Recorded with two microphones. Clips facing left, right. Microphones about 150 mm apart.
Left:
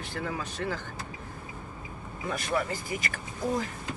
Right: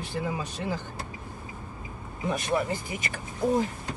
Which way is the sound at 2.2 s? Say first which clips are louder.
Right 3 dB; 20° right (ahead or behind).